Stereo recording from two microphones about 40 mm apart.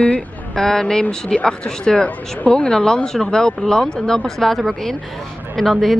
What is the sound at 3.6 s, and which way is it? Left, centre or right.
Speech, left.